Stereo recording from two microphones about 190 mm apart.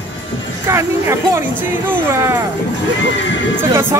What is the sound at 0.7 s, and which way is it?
Speech, 15° right (ahead or behind).